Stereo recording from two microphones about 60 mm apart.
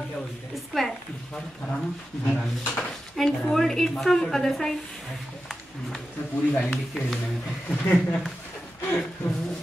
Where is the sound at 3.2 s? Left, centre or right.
Centre.